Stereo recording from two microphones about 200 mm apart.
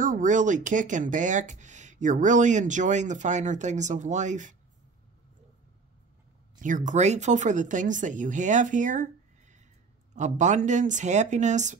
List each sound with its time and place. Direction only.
0.0 s speech: 40° right (ahead or behind)
6.5 s speech: 40° right (ahead or behind)